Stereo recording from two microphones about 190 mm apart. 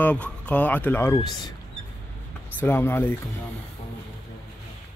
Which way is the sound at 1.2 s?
20° left (ahead or behind).